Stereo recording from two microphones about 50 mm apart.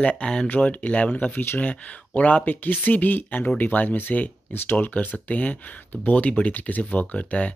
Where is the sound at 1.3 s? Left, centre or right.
Left.